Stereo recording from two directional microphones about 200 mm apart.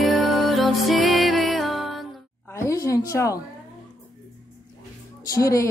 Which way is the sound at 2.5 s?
15° left (ahead or behind).